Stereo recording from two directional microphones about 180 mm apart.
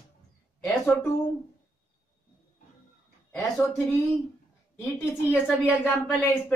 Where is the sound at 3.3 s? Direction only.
10° left (ahead or behind).